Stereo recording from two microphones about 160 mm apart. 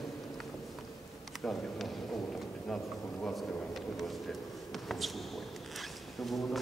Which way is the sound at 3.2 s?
Centre (ahead or behind).